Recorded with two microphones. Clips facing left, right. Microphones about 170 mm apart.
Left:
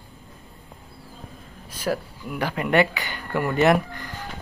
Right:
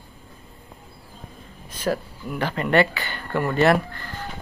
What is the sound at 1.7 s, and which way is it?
Speech, 10° left (ahead or behind).